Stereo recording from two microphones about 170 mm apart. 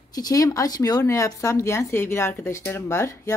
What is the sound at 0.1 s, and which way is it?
Speech, 20° left (ahead or behind).